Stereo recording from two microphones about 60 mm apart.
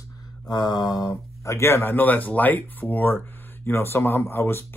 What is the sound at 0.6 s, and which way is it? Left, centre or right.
Speech, left.